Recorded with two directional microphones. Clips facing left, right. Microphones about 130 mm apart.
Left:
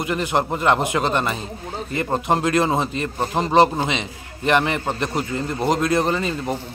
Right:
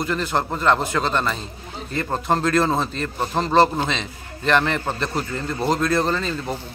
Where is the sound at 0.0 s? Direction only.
15° left (ahead or behind).